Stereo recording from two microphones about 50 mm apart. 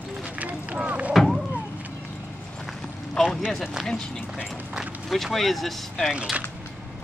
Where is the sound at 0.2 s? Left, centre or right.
Right.